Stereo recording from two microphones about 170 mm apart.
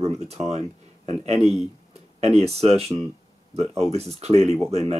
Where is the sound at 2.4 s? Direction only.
35° right (ahead or behind).